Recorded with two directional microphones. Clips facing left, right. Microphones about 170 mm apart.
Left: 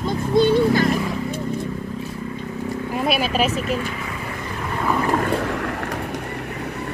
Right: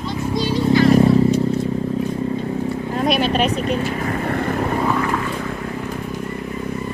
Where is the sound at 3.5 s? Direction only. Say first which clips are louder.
Right 3 dB; 35° right (ahead or behind); by 4.7 s 55° right (ahead or behind).